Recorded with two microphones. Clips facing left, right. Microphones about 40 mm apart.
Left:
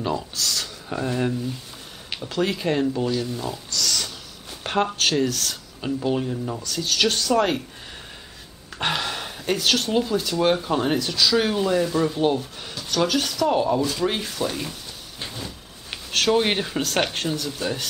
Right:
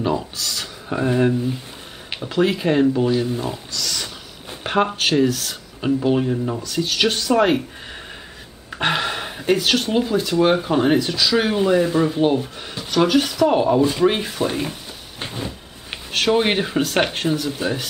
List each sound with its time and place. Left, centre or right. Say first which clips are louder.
0.0 s speech: right 3 dB; centre
3.7 s pig: left 1 dB; centre
4.6 s speech: right 3 dB; centre
8.6 s speech: right 4 dB; centre
16.1 s speech: right 2 dB; centre